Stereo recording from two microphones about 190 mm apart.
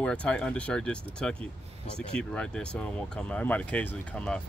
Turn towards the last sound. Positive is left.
turn(degrees=5)  # may be behind; listen again after turning